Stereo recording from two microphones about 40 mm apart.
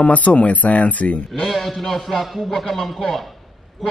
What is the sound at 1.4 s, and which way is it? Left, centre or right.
Speech, centre.